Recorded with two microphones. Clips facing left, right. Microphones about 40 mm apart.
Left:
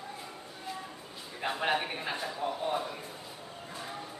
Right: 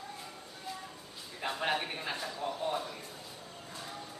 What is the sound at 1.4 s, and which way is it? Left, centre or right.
A man's voice, centre.